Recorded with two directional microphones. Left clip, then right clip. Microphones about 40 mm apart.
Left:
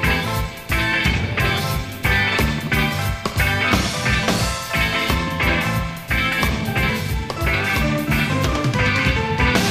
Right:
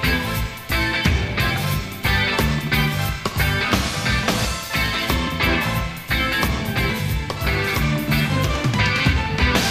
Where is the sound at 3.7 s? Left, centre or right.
Left.